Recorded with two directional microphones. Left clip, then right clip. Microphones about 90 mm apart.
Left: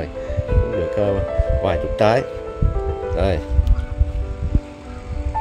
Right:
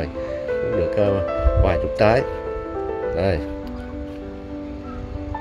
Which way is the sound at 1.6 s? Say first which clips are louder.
Left 1 dB; 40° left (ahead or behind).